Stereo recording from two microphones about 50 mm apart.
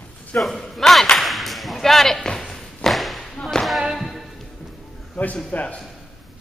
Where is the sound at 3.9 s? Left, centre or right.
Centre.